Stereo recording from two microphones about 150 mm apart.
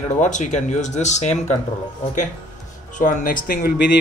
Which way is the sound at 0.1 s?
55° left (ahead or behind).